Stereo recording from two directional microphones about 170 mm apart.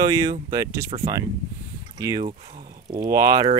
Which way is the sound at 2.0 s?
20° right (ahead or behind).